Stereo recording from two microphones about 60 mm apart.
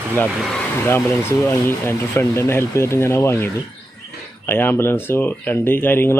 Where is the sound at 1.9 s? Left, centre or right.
Left.